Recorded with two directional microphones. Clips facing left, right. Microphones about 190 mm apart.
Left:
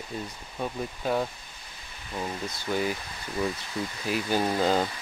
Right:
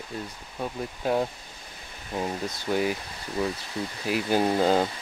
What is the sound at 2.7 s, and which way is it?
Speech, 10° right (ahead or behind).